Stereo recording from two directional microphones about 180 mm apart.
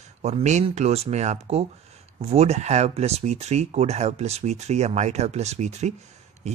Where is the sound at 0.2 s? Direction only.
40° right (ahead or behind).